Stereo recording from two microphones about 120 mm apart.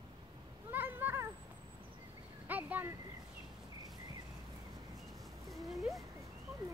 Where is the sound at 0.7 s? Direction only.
15° right (ahead or behind).